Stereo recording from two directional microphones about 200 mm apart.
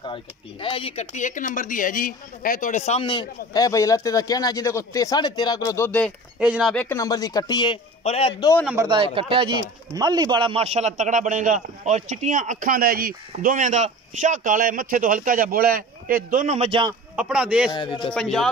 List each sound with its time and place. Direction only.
0.0 s speech: 25° left (ahead or behind)
5.9 s speech: 5° left (ahead or behind)
6.4 s speech: 5° right (ahead or behind)
6.7 s speech: 10° left (ahead or behind)
8.7 s a man's voice: 25° right (ahead or behind)
17.1 s speech: 5° right (ahead or behind)
17.7 s speech: 25° left (ahead or behind)
18.1 s speech: centre (ahead or behind)